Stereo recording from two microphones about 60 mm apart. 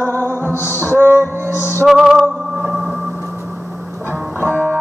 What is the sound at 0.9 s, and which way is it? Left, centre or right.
Music, right.